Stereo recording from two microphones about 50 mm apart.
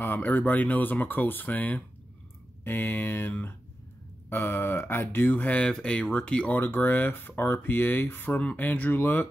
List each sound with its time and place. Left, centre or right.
0.0 s speech: left
5.3 s speech: left
5.7 s speech: centre
6.5 s speech: left